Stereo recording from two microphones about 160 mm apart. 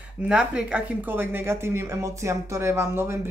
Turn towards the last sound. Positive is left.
turn(degrees=-15)  # may be behind; listen again after turning